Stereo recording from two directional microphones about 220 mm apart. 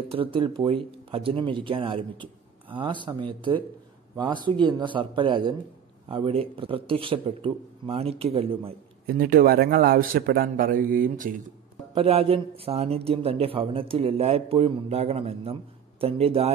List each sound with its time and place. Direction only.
0.1 s a man's voice: 25° right (ahead or behind)
9.0 s a man's voice: 40° right (ahead or behind)
11.9 s a man's voice: 25° right (ahead or behind)